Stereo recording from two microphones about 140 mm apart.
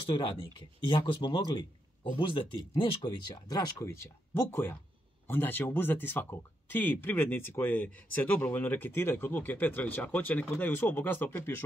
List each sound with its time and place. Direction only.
0.1 s speech: 35° left (ahead or behind)
3.7 s speech: 15° left (ahead or behind)